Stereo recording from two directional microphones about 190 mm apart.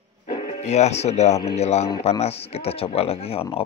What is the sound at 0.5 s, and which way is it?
Speech, 35° left (ahead or behind).